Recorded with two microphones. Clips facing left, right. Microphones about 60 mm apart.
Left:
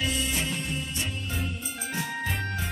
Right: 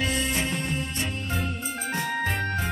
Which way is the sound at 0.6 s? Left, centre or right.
Right.